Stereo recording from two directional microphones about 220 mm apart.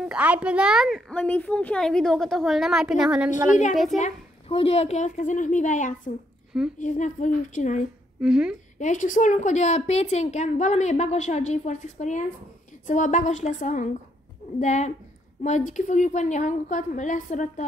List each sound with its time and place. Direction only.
0.0 s speech: 5° right (ahead or behind)
4.0 s a woman's voice: 25° left (ahead or behind)
8.2 s speech: 5° right (ahead or behind)
8.7 s a woman's voice: 35° left (ahead or behind)